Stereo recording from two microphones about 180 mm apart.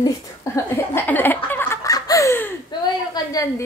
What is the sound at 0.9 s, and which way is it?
Laughter, 10° left (ahead or behind).